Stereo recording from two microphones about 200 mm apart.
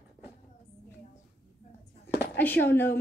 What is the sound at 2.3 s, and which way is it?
Speech, 10° left (ahead or behind).